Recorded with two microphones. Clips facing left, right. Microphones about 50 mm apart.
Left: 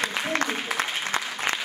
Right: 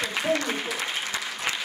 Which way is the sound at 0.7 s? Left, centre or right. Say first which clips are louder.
Left 3 dB; left.